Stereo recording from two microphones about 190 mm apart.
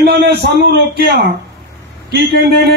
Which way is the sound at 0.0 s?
60° right (ahead or behind).